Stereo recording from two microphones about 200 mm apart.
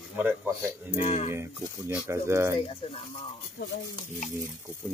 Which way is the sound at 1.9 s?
15° right (ahead or behind).